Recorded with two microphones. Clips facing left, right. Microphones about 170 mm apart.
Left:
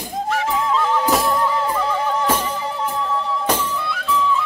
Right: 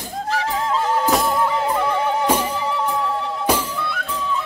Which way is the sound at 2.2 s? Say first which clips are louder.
Right 1 dB; 10° right (ahead or behind).